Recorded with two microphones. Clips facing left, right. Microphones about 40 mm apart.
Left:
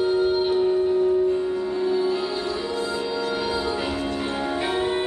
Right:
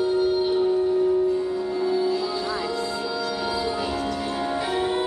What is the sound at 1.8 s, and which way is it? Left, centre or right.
Music, left.